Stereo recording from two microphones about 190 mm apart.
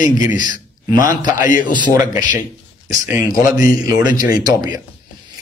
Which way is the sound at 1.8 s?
15° right (ahead or behind).